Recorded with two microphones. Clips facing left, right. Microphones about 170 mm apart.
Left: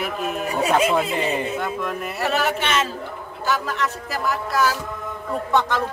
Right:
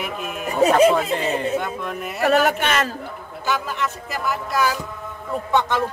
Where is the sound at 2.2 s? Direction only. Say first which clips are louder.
Right 5 dB; 50° right (ahead or behind).